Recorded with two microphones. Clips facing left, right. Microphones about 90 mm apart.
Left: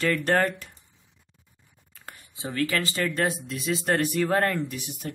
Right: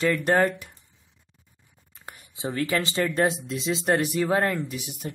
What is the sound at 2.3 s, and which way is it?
Speech, 20° right (ahead or behind).